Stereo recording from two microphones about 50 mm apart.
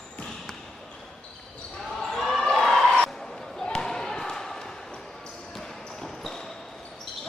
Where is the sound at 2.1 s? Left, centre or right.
Centre.